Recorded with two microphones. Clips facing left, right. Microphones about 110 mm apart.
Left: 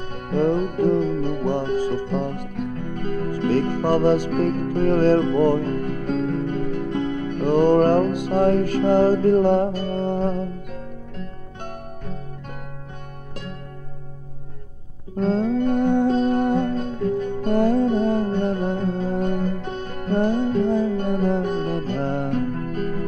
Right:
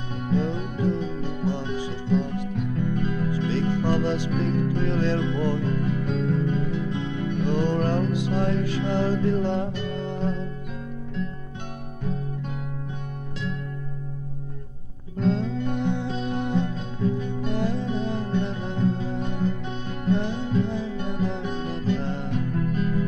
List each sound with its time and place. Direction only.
0.1 s music: 55° left (ahead or behind)
15.1 s music: 45° left (ahead or behind)